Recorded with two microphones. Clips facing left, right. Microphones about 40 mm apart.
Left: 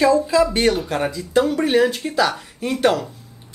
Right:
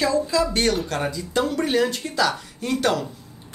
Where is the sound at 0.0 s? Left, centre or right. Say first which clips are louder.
Left 5 dB; left.